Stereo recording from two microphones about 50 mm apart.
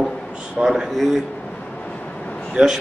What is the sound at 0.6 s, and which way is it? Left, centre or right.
Speech, centre.